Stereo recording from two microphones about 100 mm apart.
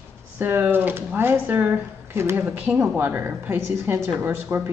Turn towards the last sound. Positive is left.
turn(degrees=-25)  # may be behind; listen again after turning